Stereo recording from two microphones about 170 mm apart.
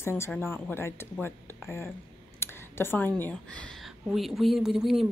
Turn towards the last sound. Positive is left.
turn(degrees=0)  # may be behind; listen again after turning